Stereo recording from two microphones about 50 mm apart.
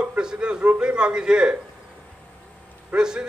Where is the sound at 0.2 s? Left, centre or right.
Centre.